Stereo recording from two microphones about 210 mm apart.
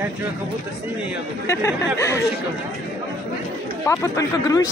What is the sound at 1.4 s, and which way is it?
Speech, 15° left (ahead or behind).